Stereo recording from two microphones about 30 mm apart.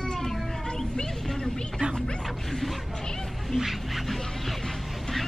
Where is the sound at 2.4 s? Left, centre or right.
Centre.